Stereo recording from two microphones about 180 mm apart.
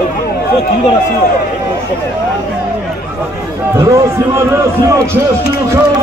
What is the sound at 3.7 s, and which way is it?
Speech, 15° right (ahead or behind).